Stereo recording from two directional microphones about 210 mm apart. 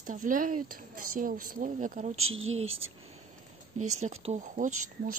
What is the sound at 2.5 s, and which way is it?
A woman's voice, 30° right (ahead or behind).